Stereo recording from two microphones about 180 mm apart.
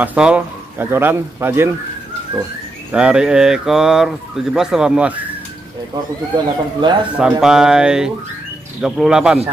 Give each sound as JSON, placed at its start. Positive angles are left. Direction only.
{"t": 0.0, "sound": "speech", "side_deg": -10}
{"t": 2.9, "sound": "speech", "side_deg": -5}
{"t": 6.3, "sound": "speech", "side_deg": -25}
{"t": 7.2, "sound": "speech", "side_deg": -5}